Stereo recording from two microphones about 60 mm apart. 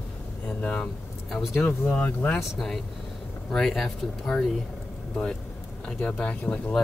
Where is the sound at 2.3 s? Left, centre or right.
Centre.